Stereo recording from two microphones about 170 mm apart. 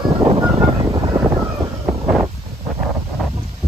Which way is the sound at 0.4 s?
25° right (ahead or behind).